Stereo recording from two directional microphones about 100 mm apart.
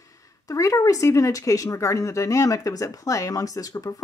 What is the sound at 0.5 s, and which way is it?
Speech, 35° left (ahead or behind).